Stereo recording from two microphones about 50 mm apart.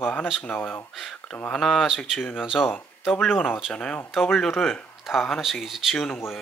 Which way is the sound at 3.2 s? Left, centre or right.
Left.